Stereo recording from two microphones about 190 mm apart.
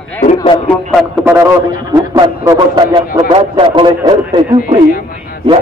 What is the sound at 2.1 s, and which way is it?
Speech, 20° right (ahead or behind).